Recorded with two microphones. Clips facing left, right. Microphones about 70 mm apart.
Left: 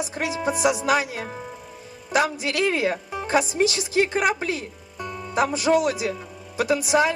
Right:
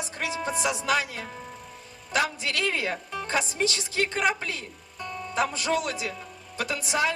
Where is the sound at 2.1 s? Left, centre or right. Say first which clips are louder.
Left 5 dB; centre.